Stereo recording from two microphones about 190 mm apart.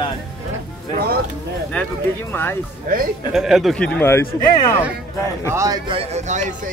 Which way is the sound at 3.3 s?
Centre (ahead or behind).